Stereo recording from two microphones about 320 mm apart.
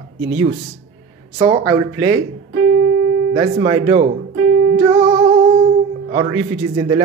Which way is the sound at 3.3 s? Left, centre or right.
Centre.